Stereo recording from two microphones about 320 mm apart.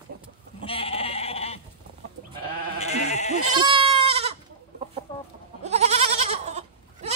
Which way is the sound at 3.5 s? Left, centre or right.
Centre.